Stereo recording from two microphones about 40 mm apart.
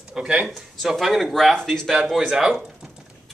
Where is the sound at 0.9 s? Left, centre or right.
Centre.